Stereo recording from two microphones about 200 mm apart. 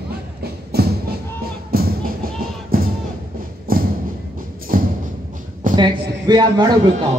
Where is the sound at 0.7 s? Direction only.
50° right (ahead or behind).